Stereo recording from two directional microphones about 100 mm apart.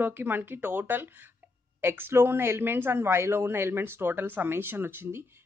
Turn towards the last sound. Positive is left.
turn(degrees=-20)  # may be behind; listen again after turning